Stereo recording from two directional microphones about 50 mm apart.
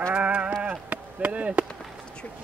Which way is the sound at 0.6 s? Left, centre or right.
Right.